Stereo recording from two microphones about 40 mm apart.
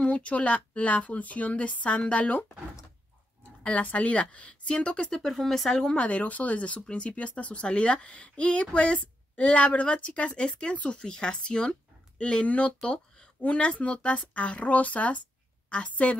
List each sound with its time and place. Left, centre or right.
0.0 s speech: left
3.6 s speech: left
5.1 s speech: centre
5.9 s a woman's voice: left